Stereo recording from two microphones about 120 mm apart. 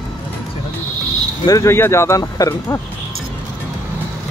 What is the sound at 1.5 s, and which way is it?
Speech, 25° left (ahead or behind).